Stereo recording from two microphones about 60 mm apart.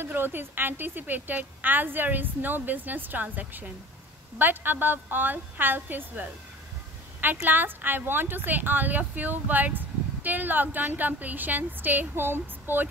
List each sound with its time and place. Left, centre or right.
0.0 s speech: right